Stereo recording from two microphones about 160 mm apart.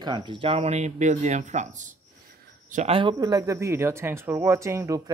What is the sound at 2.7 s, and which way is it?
Speech, 35° right (ahead or behind).